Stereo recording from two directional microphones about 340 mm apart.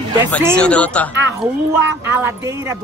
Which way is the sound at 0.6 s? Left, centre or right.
Centre.